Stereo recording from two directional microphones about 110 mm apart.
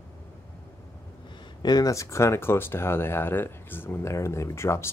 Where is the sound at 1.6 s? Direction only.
35° left (ahead or behind).